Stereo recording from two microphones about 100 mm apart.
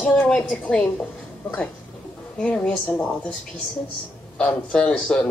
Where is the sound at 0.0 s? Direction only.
10° left (ahead or behind).